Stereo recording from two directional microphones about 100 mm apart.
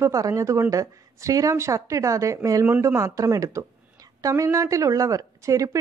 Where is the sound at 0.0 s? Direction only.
30° right (ahead or behind).